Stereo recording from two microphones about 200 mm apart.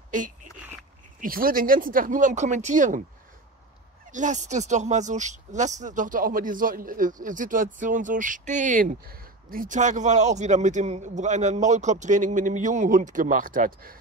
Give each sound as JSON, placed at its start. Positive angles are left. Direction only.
{"t": 0.1, "sound": "a sound", "side_deg": -40}
{"t": 1.2, "sound": "speech", "side_deg": -45}
{"t": 4.1, "sound": "speech", "side_deg": -35}